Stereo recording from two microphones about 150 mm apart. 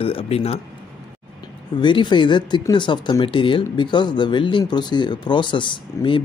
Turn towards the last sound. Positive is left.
turn(degrees=35)  # may be behind; listen again after turning